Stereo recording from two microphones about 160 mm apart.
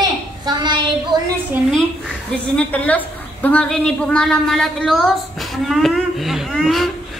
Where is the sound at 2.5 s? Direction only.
10° left (ahead or behind).